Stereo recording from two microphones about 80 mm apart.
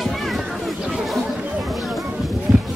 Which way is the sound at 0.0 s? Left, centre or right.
Centre.